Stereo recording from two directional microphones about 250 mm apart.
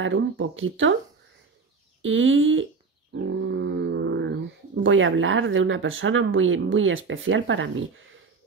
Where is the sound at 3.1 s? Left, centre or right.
Right.